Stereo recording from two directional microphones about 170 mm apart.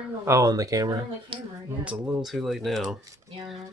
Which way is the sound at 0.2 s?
20° right (ahead or behind).